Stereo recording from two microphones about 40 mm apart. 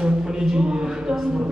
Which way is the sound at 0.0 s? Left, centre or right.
Centre.